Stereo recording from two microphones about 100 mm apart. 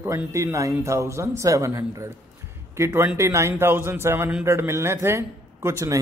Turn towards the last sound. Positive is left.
turn(degrees=-30)  # may be behind; listen again after turning